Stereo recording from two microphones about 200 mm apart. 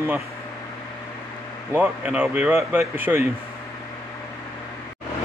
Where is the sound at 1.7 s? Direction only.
10° right (ahead or behind).